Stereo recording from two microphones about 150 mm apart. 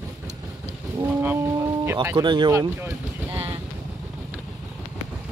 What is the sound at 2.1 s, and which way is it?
Speech, 30° right (ahead or behind).